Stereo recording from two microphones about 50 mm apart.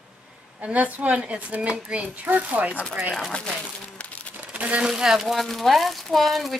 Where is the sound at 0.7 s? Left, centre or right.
Right.